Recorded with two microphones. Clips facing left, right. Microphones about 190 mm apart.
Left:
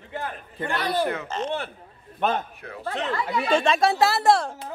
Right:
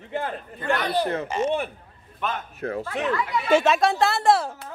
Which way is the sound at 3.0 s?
35° left (ahead or behind).